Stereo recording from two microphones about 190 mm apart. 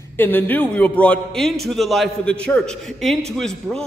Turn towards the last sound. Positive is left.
turn(degrees=5)  # may be behind; listen again after turning